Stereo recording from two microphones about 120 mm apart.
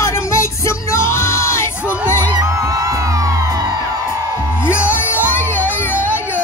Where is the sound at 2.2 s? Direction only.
30° right (ahead or behind).